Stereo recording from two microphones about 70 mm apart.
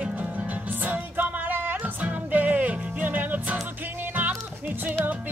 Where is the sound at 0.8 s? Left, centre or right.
Right.